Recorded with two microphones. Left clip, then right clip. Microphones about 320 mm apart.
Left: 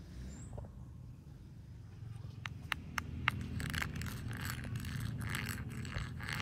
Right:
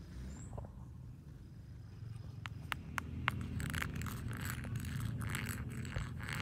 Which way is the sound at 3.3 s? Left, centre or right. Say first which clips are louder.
Left 3 dB; centre.